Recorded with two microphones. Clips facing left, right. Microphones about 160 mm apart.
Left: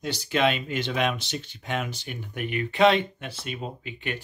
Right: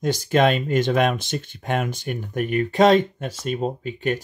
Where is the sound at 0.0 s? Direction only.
45° right (ahead or behind).